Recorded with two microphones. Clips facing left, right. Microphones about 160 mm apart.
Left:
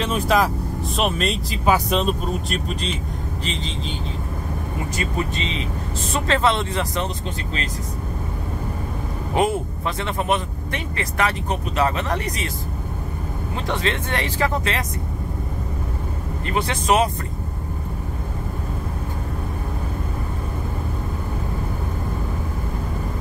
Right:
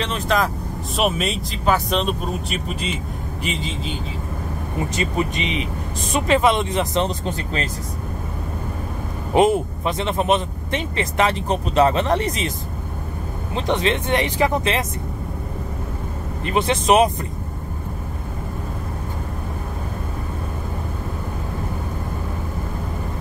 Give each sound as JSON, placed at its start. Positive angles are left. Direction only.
{"t": 0.0, "sound": "speech", "side_deg": 5}
{"t": 4.9, "sound": "speech", "side_deg": -15}
{"t": 9.3, "sound": "speech", "side_deg": -20}
{"t": 13.6, "sound": "speech", "side_deg": -20}
{"t": 16.4, "sound": "speech", "side_deg": -20}